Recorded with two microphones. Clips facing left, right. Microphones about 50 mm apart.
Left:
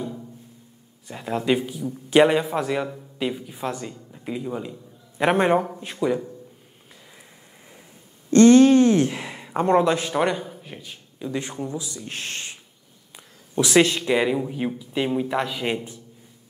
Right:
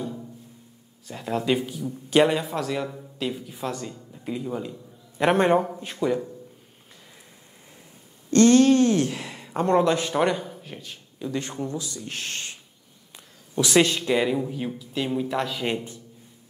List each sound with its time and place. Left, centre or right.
1.0 s a man's voice: centre
8.3 s speech: left
10.1 s a man's voice: centre; by 12.5 s left
13.1 s a sound: left
13.8 s speech: centre